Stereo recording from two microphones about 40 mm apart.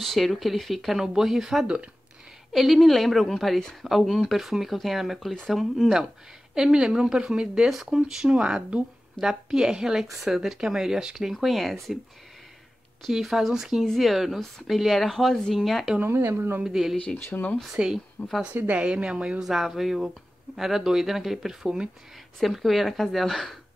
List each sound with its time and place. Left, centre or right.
0.0 s speech: centre
1.0 s speech: centre
6.5 s speech: centre
11.4 s speech: centre
13.1 s speech: centre
16.0 s speech: right
16.6 s speech: centre
17.3 s speech: left
17.8 s speech: right
18.2 s speech: left
18.5 s speech: right
18.8 s speech: right
19.4 s speech: centre